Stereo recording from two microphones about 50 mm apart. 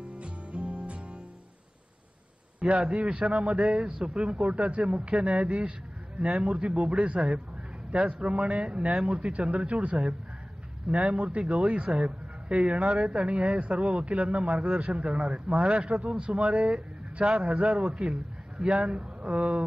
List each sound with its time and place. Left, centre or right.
0.1 s music: right
2.9 s a man's voice: centre
12.9 s speech: centre
13.2 s a man's voice: right